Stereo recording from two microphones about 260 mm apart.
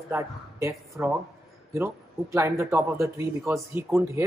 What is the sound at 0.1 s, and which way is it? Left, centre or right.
A woman's voice, centre.